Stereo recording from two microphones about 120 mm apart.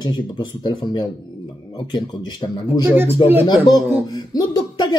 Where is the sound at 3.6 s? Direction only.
35° left (ahead or behind).